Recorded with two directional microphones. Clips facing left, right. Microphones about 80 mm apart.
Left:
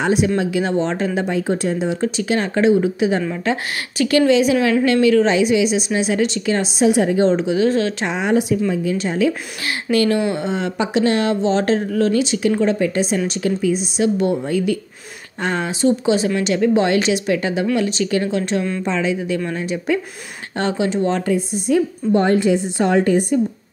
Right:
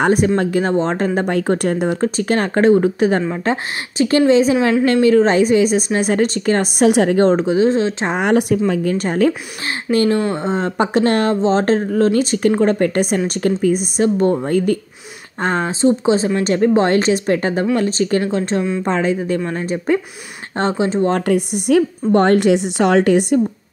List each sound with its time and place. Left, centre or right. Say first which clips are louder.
0.0 s a woman's voice: right 3 dB; right
2.0 s a woman's voice: right 2 dB; right
7.5 s speech: right 2 dB; right
8.1 s a woman's voice: right 3 dB; right
9.8 s a woman's voice: right 1 dB; right
18.8 s speech: right 3 dB; right
21.1 s a woman's voice: right 3 dB; right